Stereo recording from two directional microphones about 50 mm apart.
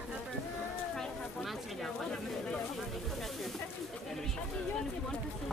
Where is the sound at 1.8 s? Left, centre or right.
Centre.